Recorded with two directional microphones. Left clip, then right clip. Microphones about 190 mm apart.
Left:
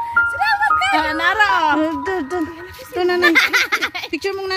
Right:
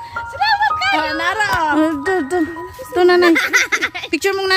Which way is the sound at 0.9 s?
65° left (ahead or behind).